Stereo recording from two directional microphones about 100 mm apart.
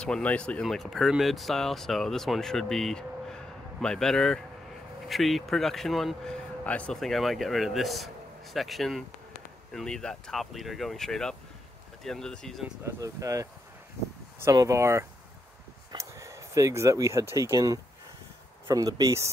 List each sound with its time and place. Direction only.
0.0 s speech: 10° left (ahead or behind)
6.6 s speech: 15° left (ahead or behind)
7.0 s speech: centre (ahead or behind)
12.8 s speech: 35° right (ahead or behind)